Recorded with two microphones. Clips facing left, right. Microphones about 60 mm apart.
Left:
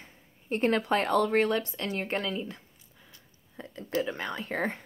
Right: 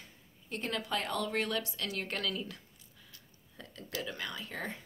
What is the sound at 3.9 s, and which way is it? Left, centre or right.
Speech, left.